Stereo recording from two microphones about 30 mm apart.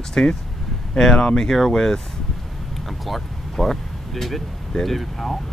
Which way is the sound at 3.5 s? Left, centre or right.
Centre.